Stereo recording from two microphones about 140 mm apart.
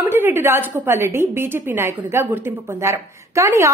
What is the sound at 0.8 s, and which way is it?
A woman's voice, 15° right (ahead or behind).